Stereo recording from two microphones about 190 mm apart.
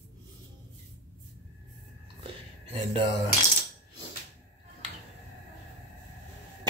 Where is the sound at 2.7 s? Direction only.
30° right (ahead or behind).